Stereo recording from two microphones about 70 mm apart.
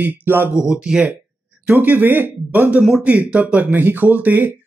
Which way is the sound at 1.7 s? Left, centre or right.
Right.